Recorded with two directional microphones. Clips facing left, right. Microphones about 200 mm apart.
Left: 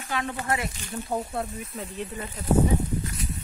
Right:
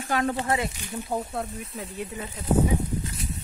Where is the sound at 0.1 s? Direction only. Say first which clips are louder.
Right 5 dB; 45° right (ahead or behind).